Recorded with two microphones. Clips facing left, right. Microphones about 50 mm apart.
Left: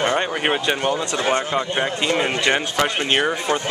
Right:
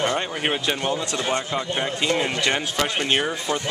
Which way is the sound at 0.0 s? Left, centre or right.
Centre.